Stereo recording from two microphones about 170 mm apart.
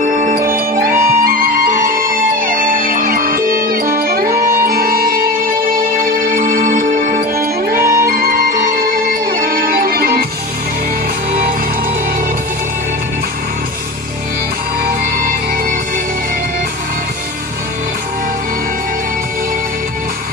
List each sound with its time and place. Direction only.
0.0 s music: 45° right (ahead or behind)
14.9 s music: 55° right (ahead or behind)